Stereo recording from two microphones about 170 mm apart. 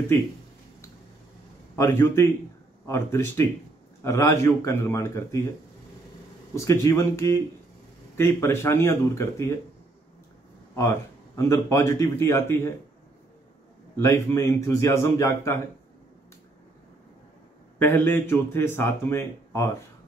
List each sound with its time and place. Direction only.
1.8 s speech: 15° left (ahead or behind)
6.5 s speech: 15° left (ahead or behind)
10.8 s speech: 15° left (ahead or behind)
13.9 s speech: 15° left (ahead or behind)
17.7 s speech: 10° left (ahead or behind)